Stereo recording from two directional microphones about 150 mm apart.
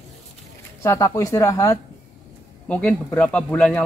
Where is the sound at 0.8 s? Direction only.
20° left (ahead or behind).